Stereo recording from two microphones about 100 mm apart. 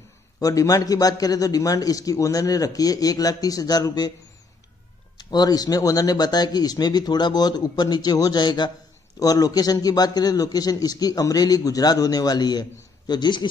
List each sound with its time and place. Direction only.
0.4 s a man's voice: 35° left (ahead or behind)
5.1 s a man's voice: 45° left (ahead or behind)